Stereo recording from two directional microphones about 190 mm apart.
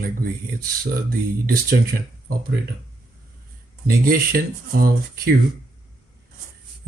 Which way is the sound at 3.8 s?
50° right (ahead or behind).